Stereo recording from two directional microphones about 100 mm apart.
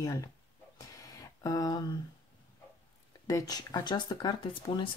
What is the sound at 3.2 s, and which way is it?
Speech, 40° left (ahead or behind).